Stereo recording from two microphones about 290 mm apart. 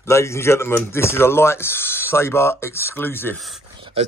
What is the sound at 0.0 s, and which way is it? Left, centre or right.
Speech, centre.